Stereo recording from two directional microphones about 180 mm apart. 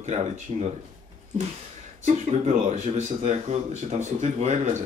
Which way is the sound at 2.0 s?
40° right (ahead or behind).